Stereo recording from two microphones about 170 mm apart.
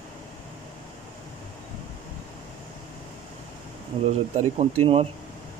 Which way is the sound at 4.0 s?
40° right (ahead or behind).